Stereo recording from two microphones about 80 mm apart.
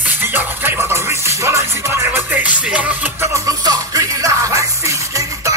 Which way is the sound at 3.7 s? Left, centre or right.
Right.